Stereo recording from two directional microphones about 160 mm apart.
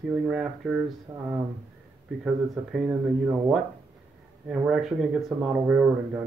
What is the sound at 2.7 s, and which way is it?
Speech, 5° right (ahead or behind).